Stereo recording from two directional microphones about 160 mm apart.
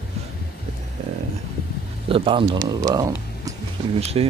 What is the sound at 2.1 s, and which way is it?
Speech, 35° right (ahead or behind).